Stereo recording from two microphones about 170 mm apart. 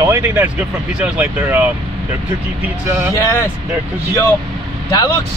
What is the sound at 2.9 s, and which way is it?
Speech, 15° right (ahead or behind).